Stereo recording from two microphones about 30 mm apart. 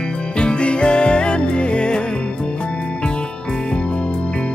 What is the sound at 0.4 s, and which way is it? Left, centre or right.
Music, left.